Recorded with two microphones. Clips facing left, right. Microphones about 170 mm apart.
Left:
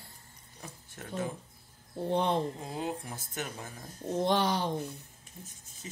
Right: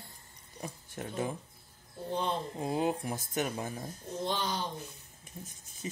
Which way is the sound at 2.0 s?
65° left (ahead or behind).